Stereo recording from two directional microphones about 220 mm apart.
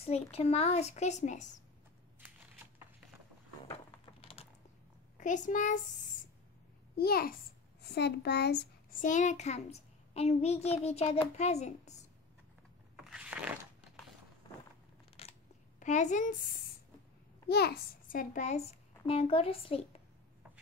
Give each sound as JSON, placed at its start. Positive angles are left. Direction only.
{"t": 0.0, "sound": "a child's voice", "side_deg": 30}
{"t": 2.1, "sound": "shuffling cards", "side_deg": -10}
{"t": 3.7, "sound": "a sound", "side_deg": 25}
{"t": 5.1, "sound": "a child's voice", "side_deg": 35}
{"t": 7.0, "sound": "a child's voice", "side_deg": 45}
{"t": 9.1, "sound": "a child's voice", "side_deg": 35}
{"t": 12.9, "sound": "a sound", "side_deg": -5}
{"t": 15.2, "sound": "scissors", "side_deg": 25}
{"t": 15.8, "sound": "a woman's voice", "side_deg": 35}
{"t": 17.5, "sound": "a child's voice", "side_deg": 45}